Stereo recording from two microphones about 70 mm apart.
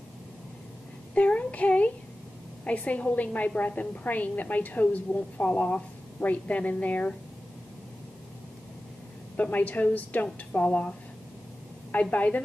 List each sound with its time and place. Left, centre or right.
1.1 s a woman's voice: centre
9.4 s a woman's voice: left